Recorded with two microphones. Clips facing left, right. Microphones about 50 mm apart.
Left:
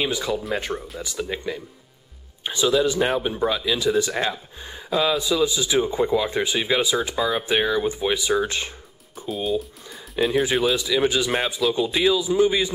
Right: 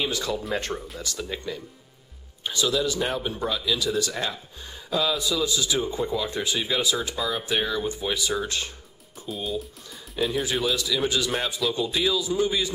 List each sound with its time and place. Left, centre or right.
0.0 s speech: centre
9.3 s speech: centre
10.4 s speech: centre